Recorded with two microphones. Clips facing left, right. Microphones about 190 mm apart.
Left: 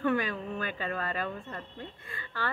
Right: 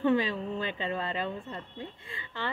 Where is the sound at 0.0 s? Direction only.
20° right (ahead or behind).